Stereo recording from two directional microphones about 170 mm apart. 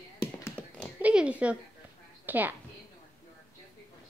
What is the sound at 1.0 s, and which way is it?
A woman's voice, 10° right (ahead or behind).